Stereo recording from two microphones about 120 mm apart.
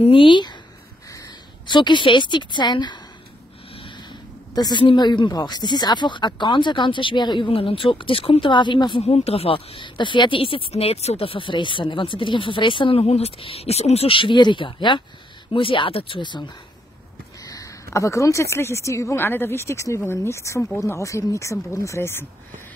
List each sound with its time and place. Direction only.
0.0 s speech: 45° left (ahead or behind)
1.7 s speech: 40° left (ahead or behind)
4.6 s speech: 40° left (ahead or behind)
9.0 s speech: 60° left (ahead or behind)
13.0 s speech: 60° left (ahead or behind); by 16.4 s 40° left (ahead or behind)
17.5 s speech: 25° left (ahead or behind)